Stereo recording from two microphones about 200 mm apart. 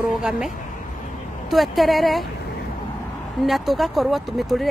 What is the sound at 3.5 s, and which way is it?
A woman's voice, centre (ahead or behind).